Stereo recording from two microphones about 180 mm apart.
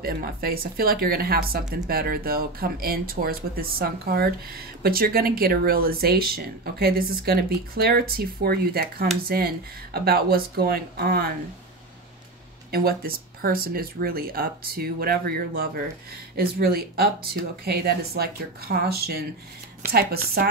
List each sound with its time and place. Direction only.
0.0 s speech: 55° right (ahead or behind)
12.7 s speech: 55° right (ahead or behind)